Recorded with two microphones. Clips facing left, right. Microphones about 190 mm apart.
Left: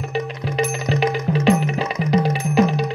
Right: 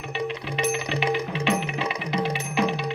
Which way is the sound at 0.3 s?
40° left (ahead or behind).